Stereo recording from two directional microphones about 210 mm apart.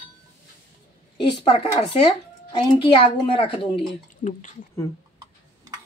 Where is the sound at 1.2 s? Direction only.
25° left (ahead or behind).